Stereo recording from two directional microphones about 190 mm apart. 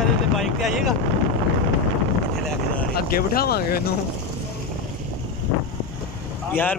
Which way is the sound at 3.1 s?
50° left (ahead or behind).